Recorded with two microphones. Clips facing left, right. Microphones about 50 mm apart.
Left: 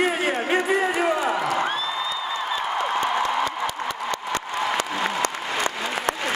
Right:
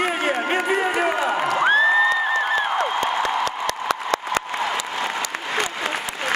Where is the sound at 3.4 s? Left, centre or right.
Right.